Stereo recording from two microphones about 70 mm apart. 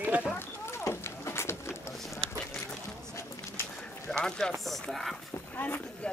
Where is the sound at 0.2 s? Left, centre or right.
Left.